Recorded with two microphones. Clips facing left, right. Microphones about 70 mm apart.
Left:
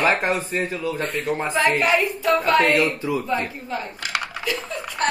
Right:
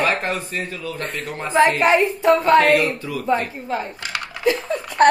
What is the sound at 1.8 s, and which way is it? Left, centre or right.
Speech, right.